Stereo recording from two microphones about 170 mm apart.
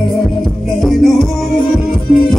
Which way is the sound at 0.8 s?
Centre (ahead or behind).